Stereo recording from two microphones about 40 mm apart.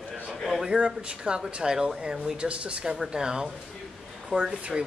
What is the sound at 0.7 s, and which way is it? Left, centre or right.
Speech, right.